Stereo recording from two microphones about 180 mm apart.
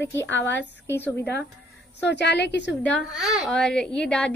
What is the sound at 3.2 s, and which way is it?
A child's voice, centre (ahead or behind).